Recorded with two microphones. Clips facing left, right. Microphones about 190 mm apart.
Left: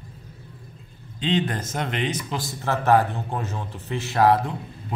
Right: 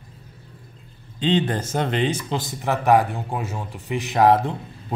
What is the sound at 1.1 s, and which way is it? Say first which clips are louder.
A man's voice: right 3 dB; 30° right (ahead or behind).